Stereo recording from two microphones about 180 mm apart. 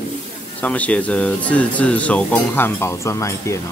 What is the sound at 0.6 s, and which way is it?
Speech, 10° left (ahead or behind).